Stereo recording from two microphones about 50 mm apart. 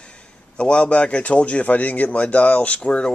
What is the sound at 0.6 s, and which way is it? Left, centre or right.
Speech, left.